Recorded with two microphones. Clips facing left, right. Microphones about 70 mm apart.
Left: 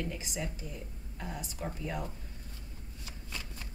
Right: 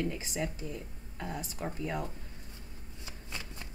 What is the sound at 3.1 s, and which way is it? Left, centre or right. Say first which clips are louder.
Shuffling cards: right 1 dB; right.